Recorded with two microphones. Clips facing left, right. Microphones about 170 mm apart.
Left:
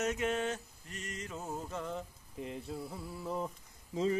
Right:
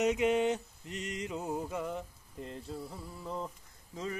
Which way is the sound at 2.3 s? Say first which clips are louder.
Left 1 dB; 5° left (ahead or behind).